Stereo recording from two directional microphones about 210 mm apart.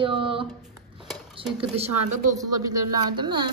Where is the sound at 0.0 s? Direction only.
25° right (ahead or behind).